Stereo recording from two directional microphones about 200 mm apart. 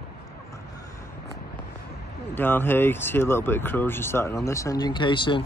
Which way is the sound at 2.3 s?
10° left (ahead or behind).